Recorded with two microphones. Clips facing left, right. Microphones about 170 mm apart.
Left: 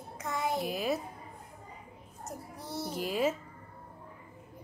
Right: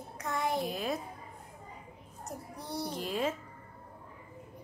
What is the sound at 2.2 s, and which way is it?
A woman's voice, centre (ahead or behind).